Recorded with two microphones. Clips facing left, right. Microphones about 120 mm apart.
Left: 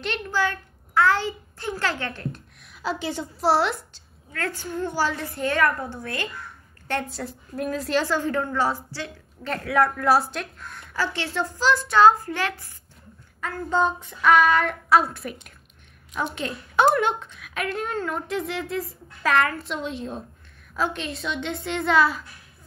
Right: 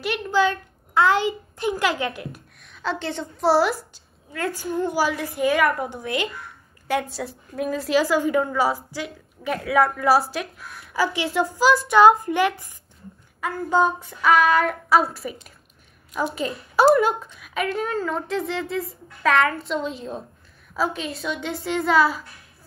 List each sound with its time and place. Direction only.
0.0 s a woman's voice: 5° right (ahead or behind)
0.4 s a child's voice: 20° right (ahead or behind)
2.6 s a woman's voice: 5° left (ahead or behind)
4.3 s a woman's voice: 15° right (ahead or behind)
6.9 s a woman's voice: centre (ahead or behind)